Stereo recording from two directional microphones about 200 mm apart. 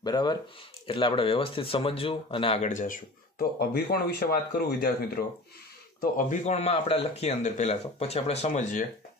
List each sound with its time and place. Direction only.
0.0 s speech: 20° left (ahead or behind)